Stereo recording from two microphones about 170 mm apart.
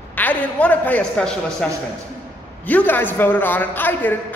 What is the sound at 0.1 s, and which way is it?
A woman's voice, 10° left (ahead or behind).